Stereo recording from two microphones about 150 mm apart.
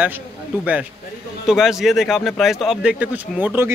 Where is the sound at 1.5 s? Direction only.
Centre (ahead or behind).